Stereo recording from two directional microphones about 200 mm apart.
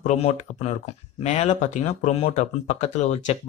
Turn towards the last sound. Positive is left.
turn(degrees=35)  # may be behind; listen again after turning